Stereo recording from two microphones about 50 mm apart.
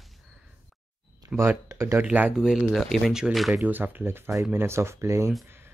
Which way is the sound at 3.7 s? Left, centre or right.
Right.